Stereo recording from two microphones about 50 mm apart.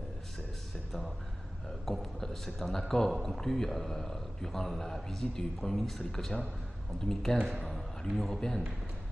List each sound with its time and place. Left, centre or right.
1.9 s a man's voice: centre